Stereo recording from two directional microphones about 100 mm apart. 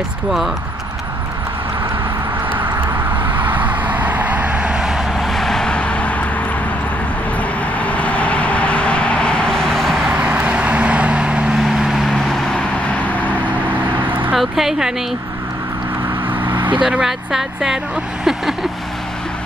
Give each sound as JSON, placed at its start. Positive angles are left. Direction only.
{"t": 2.5, "sound": "vehicle", "side_deg": -20}
{"t": 7.8, "sound": "vehicle", "side_deg": 15}
{"t": 10.1, "sound": "vehicle", "side_deg": -10}
{"t": 14.3, "sound": "a sound", "side_deg": -5}
{"t": 16.4, "sound": "vehicle", "side_deg": -55}
{"t": 16.7, "sound": "speech", "side_deg": -10}